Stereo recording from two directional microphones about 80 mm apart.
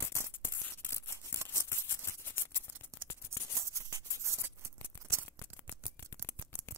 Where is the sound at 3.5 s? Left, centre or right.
Right.